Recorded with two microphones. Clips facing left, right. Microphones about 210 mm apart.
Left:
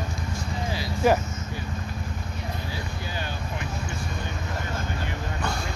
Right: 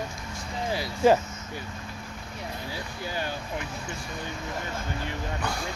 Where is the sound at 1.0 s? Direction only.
25° right (ahead or behind).